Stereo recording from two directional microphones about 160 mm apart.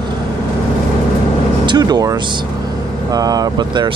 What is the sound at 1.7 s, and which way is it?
Speech, 25° right (ahead or behind).